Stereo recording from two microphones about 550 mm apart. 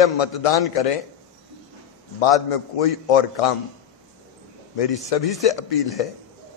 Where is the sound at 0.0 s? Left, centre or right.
Left.